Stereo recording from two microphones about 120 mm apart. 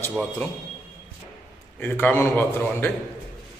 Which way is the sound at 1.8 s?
15° left (ahead or behind).